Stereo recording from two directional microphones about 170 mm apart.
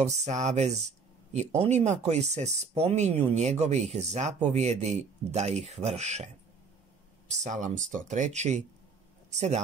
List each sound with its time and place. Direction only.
0.0 s speech: 40° right (ahead or behind)